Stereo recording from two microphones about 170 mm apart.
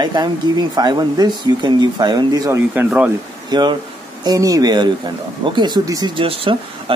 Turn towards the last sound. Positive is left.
turn(degrees=-35)  # may be behind; listen again after turning